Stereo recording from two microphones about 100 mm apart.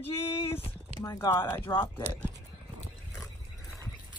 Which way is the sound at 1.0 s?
25° left (ahead or behind).